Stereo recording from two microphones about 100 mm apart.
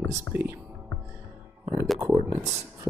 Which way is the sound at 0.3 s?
20° right (ahead or behind).